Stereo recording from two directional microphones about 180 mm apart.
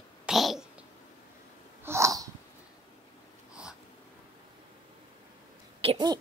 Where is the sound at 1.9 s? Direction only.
15° right (ahead or behind).